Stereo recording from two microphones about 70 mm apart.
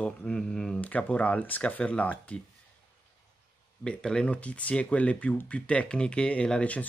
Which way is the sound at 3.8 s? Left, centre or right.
Centre.